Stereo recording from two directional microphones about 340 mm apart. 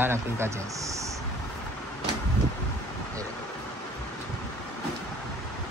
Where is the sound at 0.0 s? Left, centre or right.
Centre.